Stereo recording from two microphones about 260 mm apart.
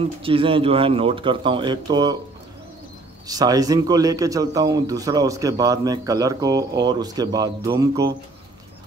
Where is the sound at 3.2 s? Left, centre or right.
Centre.